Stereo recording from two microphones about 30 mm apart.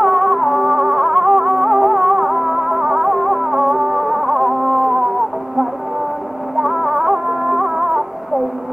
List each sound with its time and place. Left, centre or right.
0.0 s music: centre
0.7 s music: centre
2.8 s music: right
3.1 s music: centre
3.9 s music: centre
4.8 s music: right
6.5 s music: centre